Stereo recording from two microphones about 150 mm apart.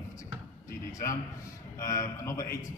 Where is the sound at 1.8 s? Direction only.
20° left (ahead or behind).